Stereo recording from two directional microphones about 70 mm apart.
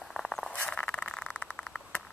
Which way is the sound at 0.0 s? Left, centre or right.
Centre.